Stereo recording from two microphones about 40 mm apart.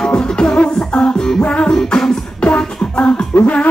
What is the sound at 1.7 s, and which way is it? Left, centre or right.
Beatboxing, centre.